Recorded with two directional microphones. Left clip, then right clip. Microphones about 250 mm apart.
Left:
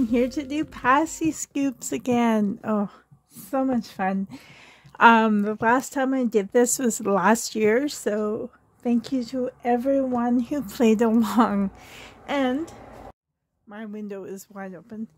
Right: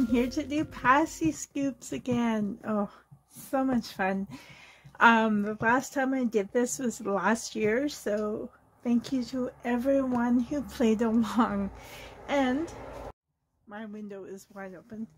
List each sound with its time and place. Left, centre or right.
0.1 s speech: left
4.9 s speech: left
13.7 s speech: left